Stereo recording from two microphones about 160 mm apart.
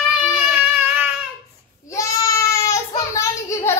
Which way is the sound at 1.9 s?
20° left (ahead or behind).